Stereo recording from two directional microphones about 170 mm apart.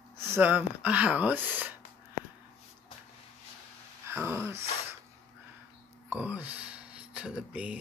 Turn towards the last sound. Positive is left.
turn(degrees=-5)  # may be behind; listen again after turning